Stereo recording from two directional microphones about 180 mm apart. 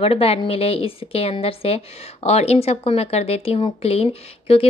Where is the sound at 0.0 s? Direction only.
35° left (ahead or behind).